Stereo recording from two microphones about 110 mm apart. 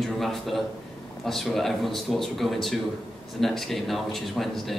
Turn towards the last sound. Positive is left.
turn(degrees=0)  # may be behind; listen again after turning